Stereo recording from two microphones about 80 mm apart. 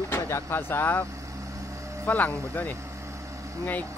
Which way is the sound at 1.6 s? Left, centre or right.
Right.